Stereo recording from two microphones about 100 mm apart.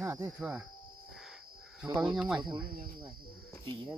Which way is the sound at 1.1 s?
5° right (ahead or behind).